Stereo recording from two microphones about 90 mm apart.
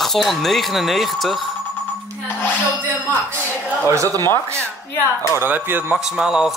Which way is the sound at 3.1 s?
20° left (ahead or behind).